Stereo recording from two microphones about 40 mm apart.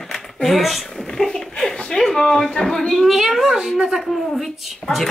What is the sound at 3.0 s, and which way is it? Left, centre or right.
A woman's voice, centre.